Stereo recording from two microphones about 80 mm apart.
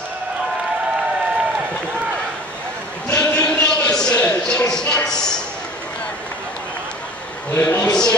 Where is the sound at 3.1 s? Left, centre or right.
Centre.